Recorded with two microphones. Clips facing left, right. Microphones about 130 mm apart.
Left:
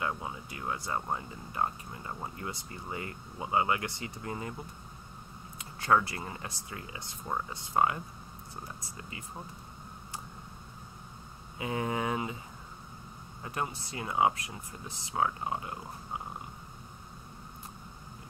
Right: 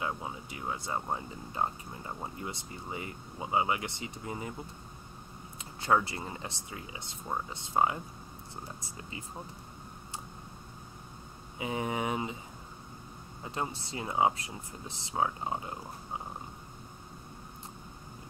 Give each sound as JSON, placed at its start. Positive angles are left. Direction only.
{"t": 0.0, "sound": "speech", "side_deg": -20}
{"t": 5.6, "sound": "speech", "side_deg": -25}
{"t": 11.5, "sound": "speech", "side_deg": -20}
{"t": 13.4, "sound": "speech", "side_deg": -25}